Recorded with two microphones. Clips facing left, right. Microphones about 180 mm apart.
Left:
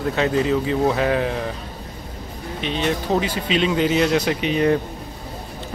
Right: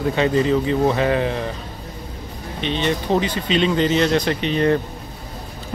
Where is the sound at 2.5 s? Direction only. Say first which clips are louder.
Right 1 dB; 5° left (ahead or behind).